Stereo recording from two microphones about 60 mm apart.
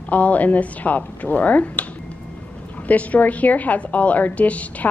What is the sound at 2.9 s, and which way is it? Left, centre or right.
A woman's voice, left.